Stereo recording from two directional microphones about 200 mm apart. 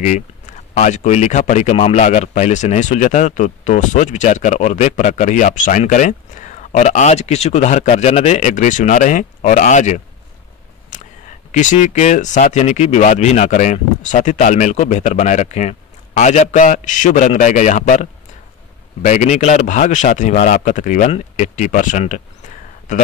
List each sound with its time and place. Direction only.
0.0 s speech: 40° left (ahead or behind)
10.9 s a sound: 40° left (ahead or behind)
11.5 s speech: 40° left (ahead or behind)
19.0 s speech: 35° left (ahead or behind)